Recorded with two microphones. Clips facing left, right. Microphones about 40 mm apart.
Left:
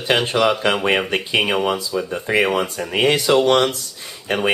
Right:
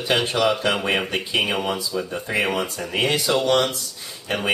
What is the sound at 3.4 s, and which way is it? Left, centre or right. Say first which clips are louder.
Speech: left 4 dB; left.